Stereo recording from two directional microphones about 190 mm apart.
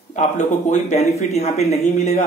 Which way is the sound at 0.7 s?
35° left (ahead or behind).